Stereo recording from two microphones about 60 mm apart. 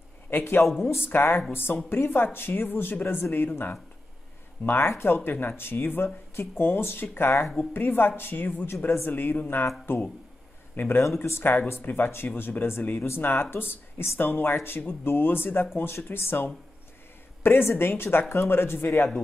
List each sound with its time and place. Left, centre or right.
0.3 s speech: left
10.8 s speech: left